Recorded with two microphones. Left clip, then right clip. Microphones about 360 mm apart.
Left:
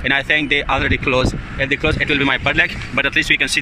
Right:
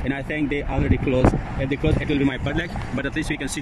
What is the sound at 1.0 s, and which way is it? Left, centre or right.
Speech, left.